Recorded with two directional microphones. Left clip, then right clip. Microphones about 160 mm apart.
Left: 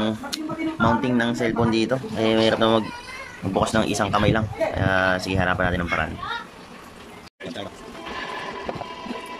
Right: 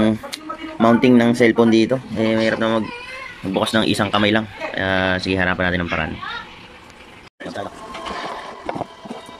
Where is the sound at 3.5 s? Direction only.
Centre (ahead or behind).